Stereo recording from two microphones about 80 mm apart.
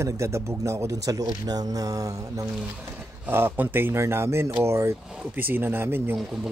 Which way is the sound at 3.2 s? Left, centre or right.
Right.